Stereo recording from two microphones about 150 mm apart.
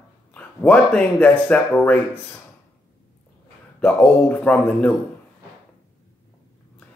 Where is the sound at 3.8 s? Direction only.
10° left (ahead or behind).